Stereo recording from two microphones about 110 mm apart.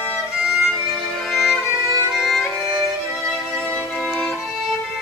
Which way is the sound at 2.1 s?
Centre (ahead or behind).